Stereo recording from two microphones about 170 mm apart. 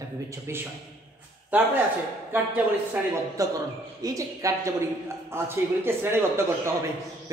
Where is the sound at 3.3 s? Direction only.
20° right (ahead or behind).